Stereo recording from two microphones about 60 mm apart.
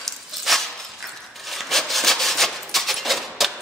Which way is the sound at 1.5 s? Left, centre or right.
Centre.